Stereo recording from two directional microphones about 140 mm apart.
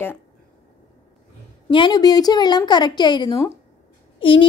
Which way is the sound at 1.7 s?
35° left (ahead or behind).